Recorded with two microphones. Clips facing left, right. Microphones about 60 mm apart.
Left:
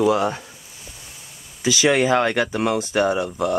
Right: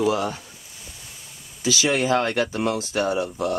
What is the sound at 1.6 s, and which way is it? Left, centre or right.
Speech, left.